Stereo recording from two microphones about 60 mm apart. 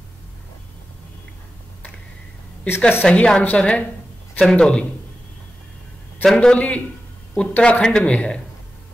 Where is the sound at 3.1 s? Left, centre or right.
Centre.